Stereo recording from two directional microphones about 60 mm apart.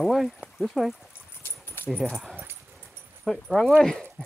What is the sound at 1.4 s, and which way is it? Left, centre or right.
Keys jangling, left.